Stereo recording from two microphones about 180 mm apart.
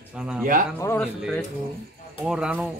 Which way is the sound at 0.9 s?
5° left (ahead or behind).